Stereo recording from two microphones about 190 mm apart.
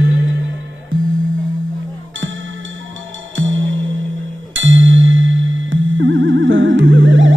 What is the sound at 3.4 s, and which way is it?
Music, 90° right.